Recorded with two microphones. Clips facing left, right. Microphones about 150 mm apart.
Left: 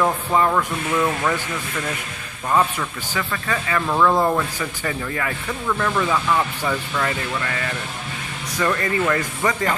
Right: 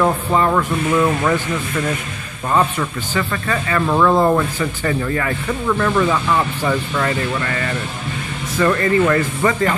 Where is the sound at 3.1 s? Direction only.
10° left (ahead or behind).